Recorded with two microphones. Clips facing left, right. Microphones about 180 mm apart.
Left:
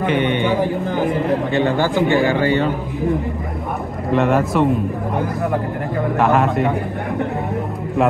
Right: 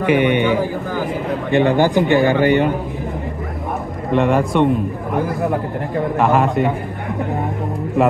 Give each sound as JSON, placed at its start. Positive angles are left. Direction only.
{"t": 0.0, "sound": "a man's voice", "side_deg": -10}
{"t": 1.5, "sound": "a man's voice", "side_deg": -15}
{"t": 4.1, "sound": "a man's voice", "side_deg": 0}
{"t": 6.1, "sound": "a man's voice", "side_deg": 0}